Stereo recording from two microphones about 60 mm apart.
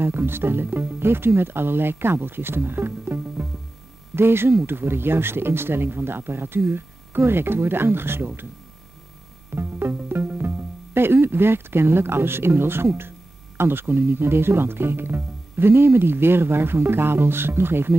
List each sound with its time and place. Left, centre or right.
0.0 s speech: right
9.6 s speech: right